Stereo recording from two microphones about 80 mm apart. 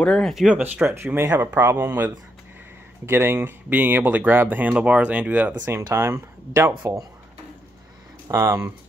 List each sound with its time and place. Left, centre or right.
0.0 s speech: centre
0.3 s speech: centre
0.8 s speech: right; by 5.6 s centre
5.6 s speech: right
8.3 s speech: right